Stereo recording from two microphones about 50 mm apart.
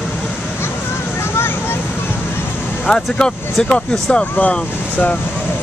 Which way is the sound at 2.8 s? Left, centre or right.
Centre.